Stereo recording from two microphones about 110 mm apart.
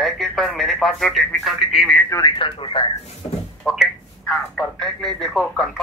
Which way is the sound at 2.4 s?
55° left (ahead or behind).